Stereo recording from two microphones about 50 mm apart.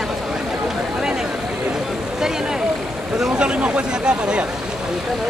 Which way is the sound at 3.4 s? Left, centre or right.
Right.